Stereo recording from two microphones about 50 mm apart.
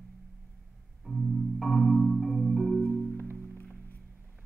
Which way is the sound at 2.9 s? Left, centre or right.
Left.